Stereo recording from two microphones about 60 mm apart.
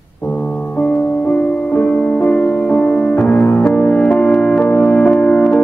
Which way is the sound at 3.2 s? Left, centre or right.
Left.